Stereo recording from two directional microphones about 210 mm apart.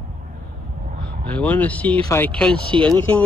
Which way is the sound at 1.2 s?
5° left (ahead or behind).